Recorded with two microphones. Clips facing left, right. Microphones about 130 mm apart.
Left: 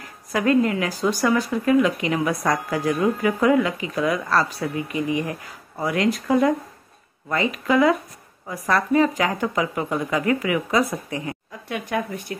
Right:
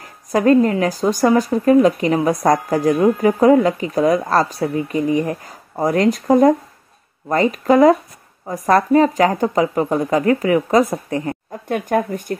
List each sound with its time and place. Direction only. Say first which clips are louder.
0.3 s speech: right 6 dB; 40° right (ahead or behind)